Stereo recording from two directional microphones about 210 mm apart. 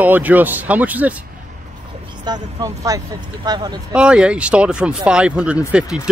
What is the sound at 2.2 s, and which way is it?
Speech, 20° right (ahead or behind).